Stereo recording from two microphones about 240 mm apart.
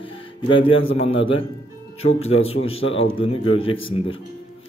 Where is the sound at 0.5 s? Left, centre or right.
Left.